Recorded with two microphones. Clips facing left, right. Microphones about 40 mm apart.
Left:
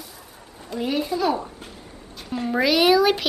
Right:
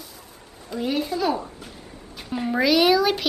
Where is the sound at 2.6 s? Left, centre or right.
Centre.